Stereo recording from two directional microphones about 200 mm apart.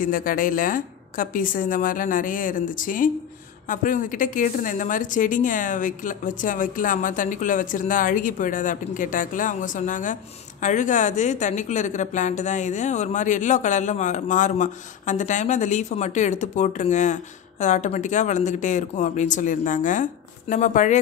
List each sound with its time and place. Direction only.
0.0 s a woman's voice: 45° left (ahead or behind)